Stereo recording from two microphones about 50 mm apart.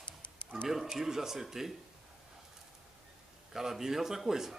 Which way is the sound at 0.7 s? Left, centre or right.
Centre.